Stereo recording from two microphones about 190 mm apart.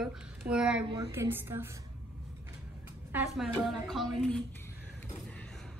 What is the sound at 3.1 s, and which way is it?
A woman's voice, 10° right (ahead or behind).